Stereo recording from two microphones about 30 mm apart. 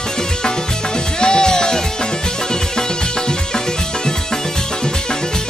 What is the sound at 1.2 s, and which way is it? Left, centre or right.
Music, left.